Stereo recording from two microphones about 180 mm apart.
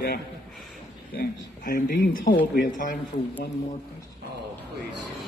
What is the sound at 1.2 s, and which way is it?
A man's voice, 60° left (ahead or behind).